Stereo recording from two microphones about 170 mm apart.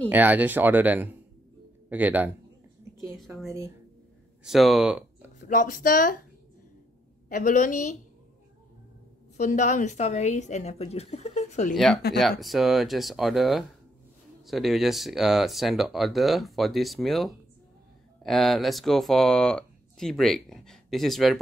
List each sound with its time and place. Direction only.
0.1 s speech: 10° right (ahead or behind)
4.5 s speech: centre (ahead or behind)
5.5 s speech: 50° left (ahead or behind)
7.2 s speech: 50° left (ahead or behind)
9.4 s a woman's voice: 45° left (ahead or behind)
11.7 s speech: centre (ahead or behind)